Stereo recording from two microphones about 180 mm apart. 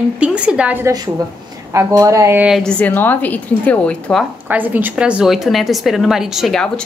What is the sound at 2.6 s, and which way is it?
A woman's voice, 5° left (ahead or behind).